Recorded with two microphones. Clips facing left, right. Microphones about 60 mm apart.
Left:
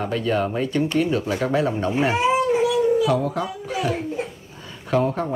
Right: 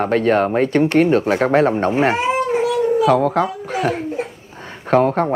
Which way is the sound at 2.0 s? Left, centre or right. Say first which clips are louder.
Left 1 dB; right.